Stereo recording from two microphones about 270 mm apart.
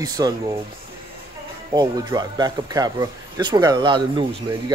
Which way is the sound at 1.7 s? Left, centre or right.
Centre.